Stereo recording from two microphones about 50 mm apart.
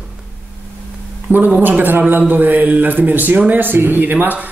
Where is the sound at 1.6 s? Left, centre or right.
Right.